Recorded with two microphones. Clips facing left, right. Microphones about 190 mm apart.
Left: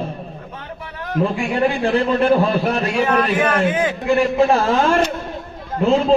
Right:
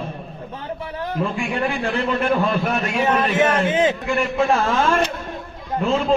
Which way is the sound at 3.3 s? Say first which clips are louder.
Left 1 dB; 25° right (ahead or behind).